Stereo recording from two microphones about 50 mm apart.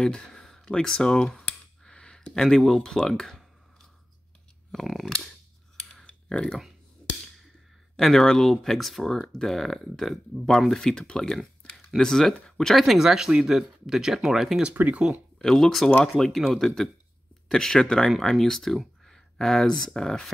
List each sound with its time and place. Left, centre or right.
0.0 s speech: centre
4.7 s speech: centre
5.9 s a sound: centre
8.0 s speech: centre
12.7 s speech: centre
14.8 s speech: right
15.3 s speech: centre